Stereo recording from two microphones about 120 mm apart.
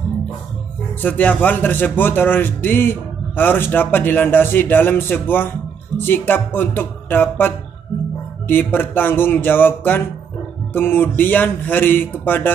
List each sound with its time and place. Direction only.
1.0 s speech: 15° left (ahead or behind)